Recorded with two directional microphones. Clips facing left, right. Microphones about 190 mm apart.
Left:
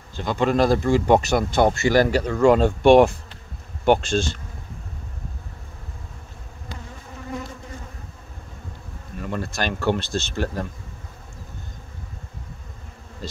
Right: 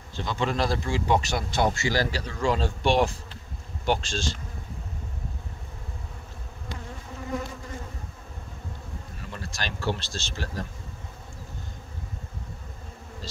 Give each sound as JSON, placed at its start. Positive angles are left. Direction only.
{"t": 0.1, "sound": "speech", "side_deg": 50}
{"t": 9.2, "sound": "speech", "side_deg": 55}
{"t": 13.2, "sound": "bee", "side_deg": 55}